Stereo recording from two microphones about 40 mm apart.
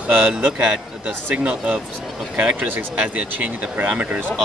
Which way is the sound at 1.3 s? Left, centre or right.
Right.